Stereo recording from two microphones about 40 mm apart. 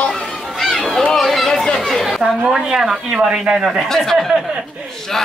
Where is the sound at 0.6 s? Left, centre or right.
Centre.